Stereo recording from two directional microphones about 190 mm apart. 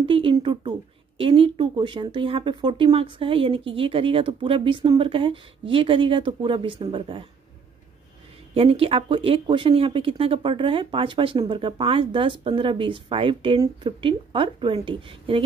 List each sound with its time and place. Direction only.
0.0 s speech: 30° right (ahead or behind)
8.5 s speech: 30° right (ahead or behind)